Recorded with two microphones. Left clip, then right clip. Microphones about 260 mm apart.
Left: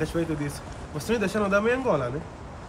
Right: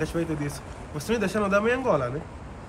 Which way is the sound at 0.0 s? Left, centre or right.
Centre.